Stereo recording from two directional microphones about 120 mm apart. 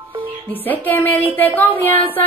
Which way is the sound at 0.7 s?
15° left (ahead or behind).